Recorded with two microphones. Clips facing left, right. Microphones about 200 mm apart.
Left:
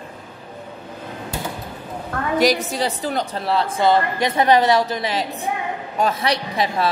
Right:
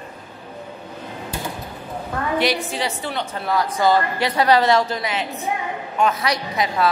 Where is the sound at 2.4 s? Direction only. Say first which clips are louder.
Left 5 dB; 40° left (ahead or behind); by 5.0 s 15° left (ahead or behind).